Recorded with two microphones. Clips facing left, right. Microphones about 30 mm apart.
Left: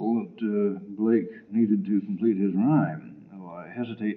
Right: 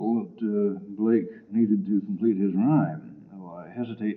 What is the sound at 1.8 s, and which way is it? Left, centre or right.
Speech, left.